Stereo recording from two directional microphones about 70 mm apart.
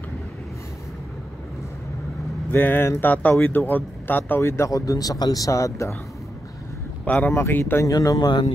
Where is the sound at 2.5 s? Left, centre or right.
Left.